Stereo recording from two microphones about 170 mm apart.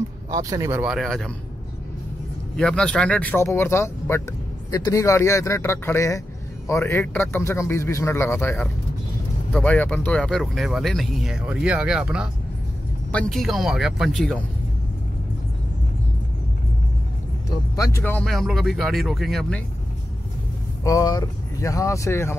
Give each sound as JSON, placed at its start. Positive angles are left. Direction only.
{"t": 0.3, "sound": "speech", "side_deg": -20}
{"t": 0.7, "sound": "speech", "side_deg": -5}
{"t": 2.5, "sound": "speech", "side_deg": 5}
{"t": 17.7, "sound": "speech", "side_deg": 15}
{"t": 20.8, "sound": "speech", "side_deg": 20}